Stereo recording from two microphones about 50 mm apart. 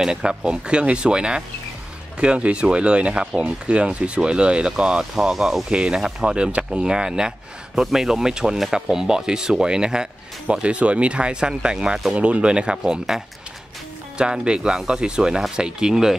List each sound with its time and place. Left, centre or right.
0.0 s speech: centre
5.7 s speech: centre